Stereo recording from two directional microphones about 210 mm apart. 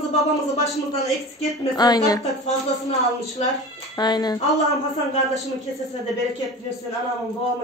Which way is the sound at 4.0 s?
20° left (ahead or behind).